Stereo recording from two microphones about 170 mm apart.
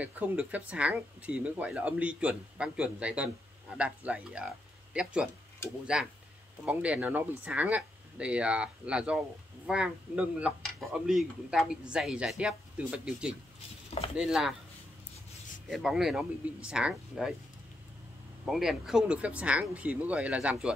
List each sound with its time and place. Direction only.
0.0 s speech: 10° right (ahead or behind)
13.8 s chopping: 35° left (ahead or behind)
14.1 s speech: 5° right (ahead or behind)
15.7 s speech: centre (ahead or behind)
18.4 s speech: centre (ahead or behind)